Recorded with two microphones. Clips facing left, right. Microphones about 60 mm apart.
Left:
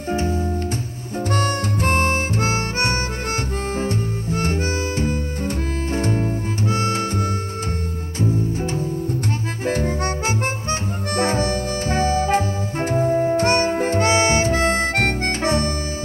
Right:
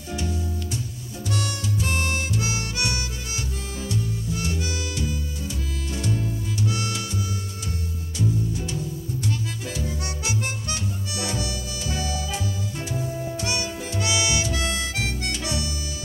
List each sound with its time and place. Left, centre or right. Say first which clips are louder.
0.1 s music: left 8 dB; left
1.3 s harmonica: left 6 dB; left
3.7 s music: left 3 dB; left
8.2 s music: left 5 dB; left
9.7 s harmonica: left 14 dB; left